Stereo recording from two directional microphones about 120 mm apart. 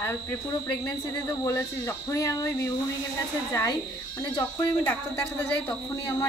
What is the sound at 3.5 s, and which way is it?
Speech, 25° left (ahead or behind).